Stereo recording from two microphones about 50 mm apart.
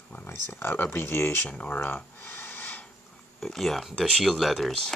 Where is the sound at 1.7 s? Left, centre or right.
Left.